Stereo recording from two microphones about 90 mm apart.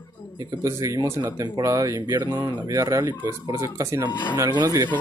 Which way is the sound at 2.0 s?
55° right (ahead or behind).